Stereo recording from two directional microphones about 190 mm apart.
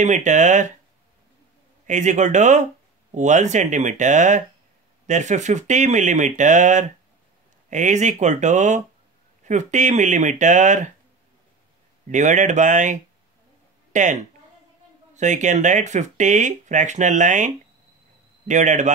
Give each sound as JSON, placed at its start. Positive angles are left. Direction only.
{"t": 0.0, "sound": "speech", "side_deg": -40}
{"t": 1.9, "sound": "speech", "side_deg": -40}
{"t": 12.1, "sound": "speech", "side_deg": -40}
{"t": 15.1, "sound": "speech", "side_deg": -40}
{"t": 18.5, "sound": "speech", "side_deg": -40}